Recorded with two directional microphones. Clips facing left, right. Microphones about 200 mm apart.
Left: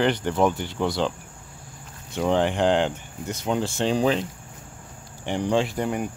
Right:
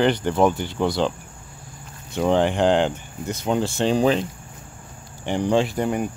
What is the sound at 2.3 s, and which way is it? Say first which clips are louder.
Speech: right 2 dB; 35° right (ahead or behind).